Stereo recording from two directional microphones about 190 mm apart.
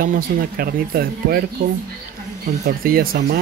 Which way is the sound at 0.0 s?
50° right (ahead or behind).